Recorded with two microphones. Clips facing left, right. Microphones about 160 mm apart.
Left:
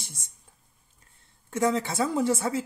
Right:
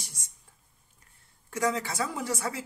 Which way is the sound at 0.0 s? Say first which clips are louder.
Left 3 dB; 25° left (ahead or behind).